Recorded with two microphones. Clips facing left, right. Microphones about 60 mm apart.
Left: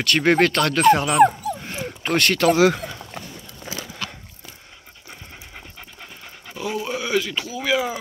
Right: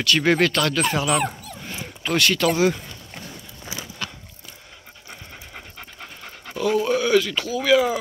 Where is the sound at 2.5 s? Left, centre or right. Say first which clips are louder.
Left 3 dB; left.